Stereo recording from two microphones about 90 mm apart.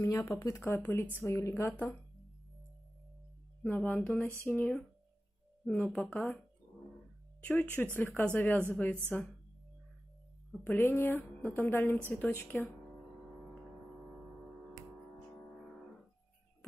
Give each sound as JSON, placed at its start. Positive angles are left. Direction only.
{"t": 0.0, "sound": "a woman's voice", "side_deg": 30}
{"t": 3.6, "sound": "a woman's voice", "side_deg": 20}
{"t": 4.0, "sound": "a sound", "side_deg": 10}
{"t": 4.4, "sound": "a woman's voice", "side_deg": 25}
{"t": 5.7, "sound": "a woman's voice", "side_deg": 5}
{"t": 6.1, "sound": "a woman's voice", "side_deg": 20}
{"t": 7.4, "sound": "a woman's voice", "side_deg": 20}
{"t": 10.6, "sound": "a woman's voice", "side_deg": 20}